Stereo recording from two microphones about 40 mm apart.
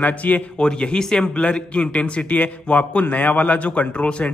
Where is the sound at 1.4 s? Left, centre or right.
Left.